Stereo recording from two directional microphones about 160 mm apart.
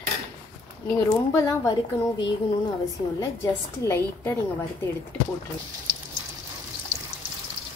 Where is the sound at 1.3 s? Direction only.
15° left (ahead or behind).